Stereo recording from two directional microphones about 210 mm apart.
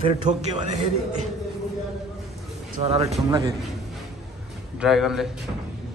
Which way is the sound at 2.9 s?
30° right (ahead or behind).